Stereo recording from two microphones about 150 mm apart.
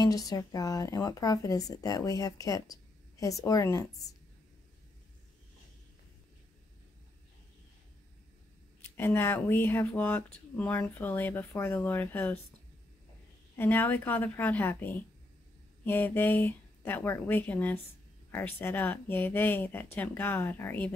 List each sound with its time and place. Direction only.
0.0 s speech: 25° left (ahead or behind)
8.9 s speech: 15° left (ahead or behind)
13.6 s speech: 15° left (ahead or behind)